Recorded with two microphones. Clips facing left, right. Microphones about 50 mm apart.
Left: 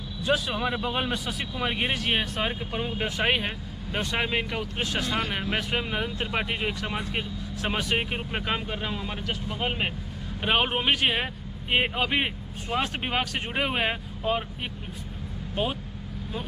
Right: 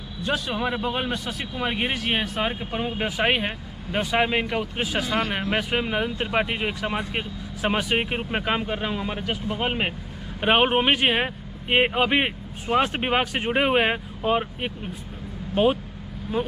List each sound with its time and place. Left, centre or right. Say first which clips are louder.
0.2 s speech: even; centre